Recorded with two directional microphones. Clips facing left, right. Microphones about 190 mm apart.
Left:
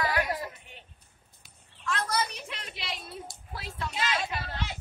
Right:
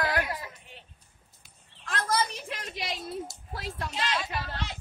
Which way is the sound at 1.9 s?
50° right (ahead or behind).